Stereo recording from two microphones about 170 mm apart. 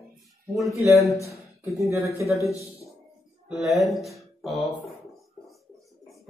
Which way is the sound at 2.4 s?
20° left (ahead or behind).